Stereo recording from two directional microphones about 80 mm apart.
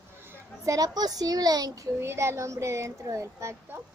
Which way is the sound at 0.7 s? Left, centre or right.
Right.